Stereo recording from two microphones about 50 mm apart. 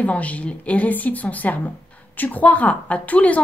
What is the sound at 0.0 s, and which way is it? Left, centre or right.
A woman's voice, left.